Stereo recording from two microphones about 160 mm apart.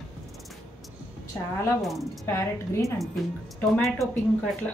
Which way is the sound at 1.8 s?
Centre (ahead or behind).